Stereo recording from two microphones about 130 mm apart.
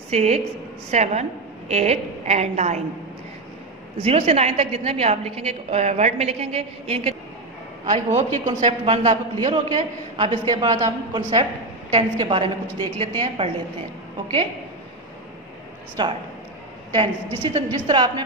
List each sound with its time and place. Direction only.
0.1 s a woman's voice: 55° right (ahead or behind)
4.0 s a woman's voice: 50° right (ahead or behind)
8.2 s a woman's voice: 70° right (ahead or behind)
8.6 s a man's voice: 50° right (ahead or behind)
16.0 s a man's voice: 35° right (ahead or behind)
17.4 s a man's voice: 40° right (ahead or behind)